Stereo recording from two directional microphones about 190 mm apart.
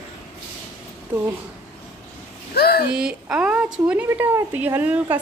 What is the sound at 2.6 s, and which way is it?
Speech, 55° left (ahead or behind).